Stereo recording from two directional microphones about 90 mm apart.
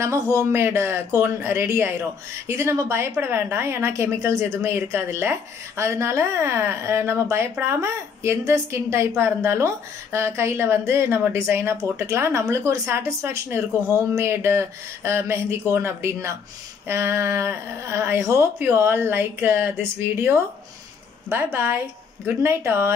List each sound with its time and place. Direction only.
0.0 s a woman's voice: 35° right (ahead or behind)